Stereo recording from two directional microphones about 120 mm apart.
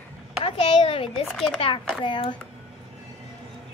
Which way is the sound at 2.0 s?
40° left (ahead or behind).